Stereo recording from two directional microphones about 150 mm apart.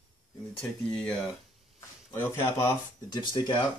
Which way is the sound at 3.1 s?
30° left (ahead or behind).